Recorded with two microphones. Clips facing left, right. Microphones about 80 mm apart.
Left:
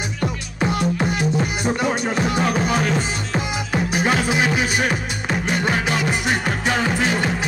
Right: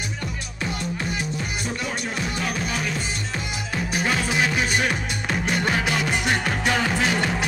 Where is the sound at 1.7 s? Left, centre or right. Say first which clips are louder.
Left 9 dB; left.